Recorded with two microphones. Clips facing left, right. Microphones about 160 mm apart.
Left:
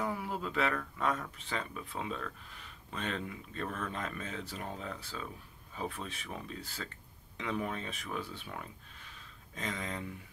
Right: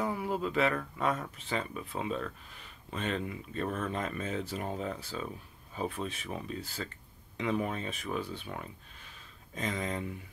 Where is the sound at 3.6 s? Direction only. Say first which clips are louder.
Right 4 dB; 20° right (ahead or behind).